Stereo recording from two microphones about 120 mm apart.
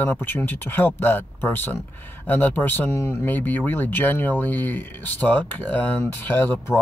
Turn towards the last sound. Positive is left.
turn(degrees=20)  # may be behind; listen again after turning